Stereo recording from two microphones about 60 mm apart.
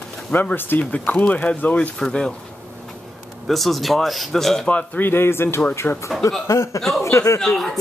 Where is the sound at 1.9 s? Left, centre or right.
Centre.